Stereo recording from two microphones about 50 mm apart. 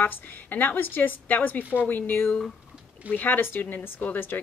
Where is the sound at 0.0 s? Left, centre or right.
Left.